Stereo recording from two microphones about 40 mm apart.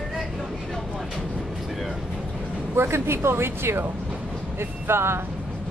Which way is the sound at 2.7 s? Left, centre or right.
Right.